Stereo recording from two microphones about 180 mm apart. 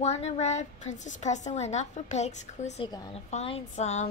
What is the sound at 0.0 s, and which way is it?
A woman's voice, 40° left (ahead or behind).